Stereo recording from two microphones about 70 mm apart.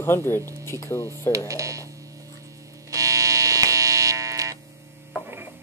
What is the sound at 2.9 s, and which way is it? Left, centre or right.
Hum, right.